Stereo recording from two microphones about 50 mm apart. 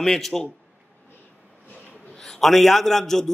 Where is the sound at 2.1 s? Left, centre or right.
Centre.